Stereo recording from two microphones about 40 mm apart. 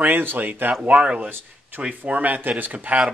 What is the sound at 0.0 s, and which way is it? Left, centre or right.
Speech, right.